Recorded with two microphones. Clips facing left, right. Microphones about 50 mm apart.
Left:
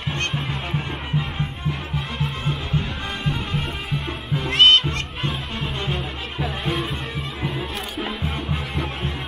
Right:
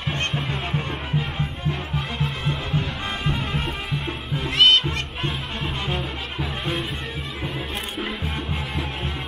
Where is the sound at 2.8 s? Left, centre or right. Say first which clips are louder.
Even; right.